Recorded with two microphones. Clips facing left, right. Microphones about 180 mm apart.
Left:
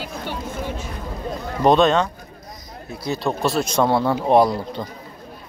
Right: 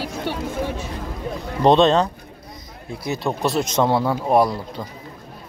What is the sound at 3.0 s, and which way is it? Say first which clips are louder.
Speech: left 1 dB; 20° right (ahead or behind).